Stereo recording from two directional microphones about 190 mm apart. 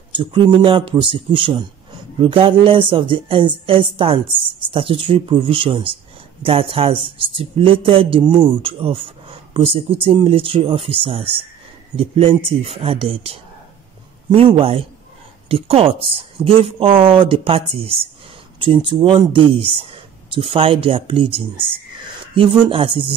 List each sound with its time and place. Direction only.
0.1 s speech: 25° right (ahead or behind)